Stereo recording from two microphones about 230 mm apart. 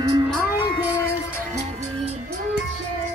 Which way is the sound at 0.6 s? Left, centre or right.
Centre.